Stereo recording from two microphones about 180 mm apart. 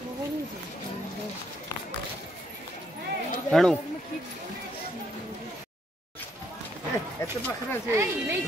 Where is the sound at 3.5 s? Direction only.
Centre (ahead or behind).